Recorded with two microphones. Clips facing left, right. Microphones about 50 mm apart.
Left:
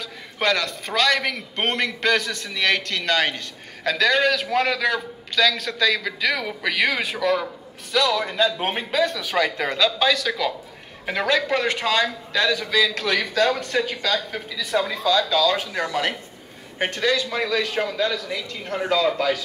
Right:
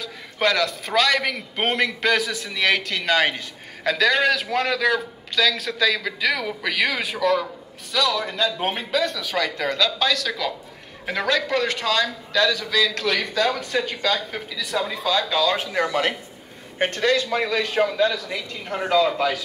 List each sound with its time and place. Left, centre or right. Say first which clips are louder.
0.0 s a man's voice: right 1 dB; centre
14.6 s speech: left 3 dB; centre
14.9 s speech: left 2 dB; centre; by 15.9 s right
15.9 s a man's voice: right 1 dB; right
17.9 s speech: right 2 dB; centre